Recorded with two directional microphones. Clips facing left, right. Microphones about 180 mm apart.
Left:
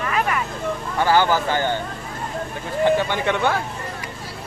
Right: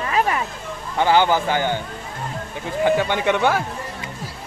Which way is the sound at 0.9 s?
20° right (ahead or behind).